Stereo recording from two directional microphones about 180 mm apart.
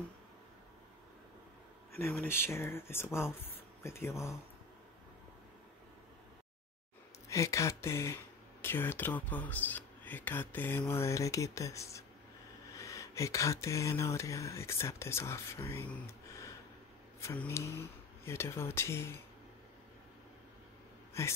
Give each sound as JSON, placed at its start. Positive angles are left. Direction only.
{"t": 2.2, "sound": "speech", "side_deg": 15}
{"t": 7.2, "sound": "speech", "side_deg": 15}